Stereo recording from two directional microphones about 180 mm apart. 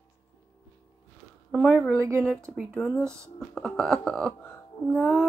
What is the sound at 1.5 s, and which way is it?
Speech, centre (ahead or behind).